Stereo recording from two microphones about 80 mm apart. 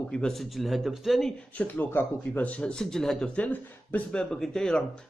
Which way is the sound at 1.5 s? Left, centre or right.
Left.